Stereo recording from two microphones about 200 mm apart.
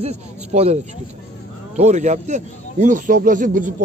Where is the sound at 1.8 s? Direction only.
35° right (ahead or behind).